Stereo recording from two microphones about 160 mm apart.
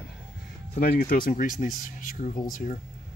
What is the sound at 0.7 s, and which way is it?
Speech, 65° left (ahead or behind).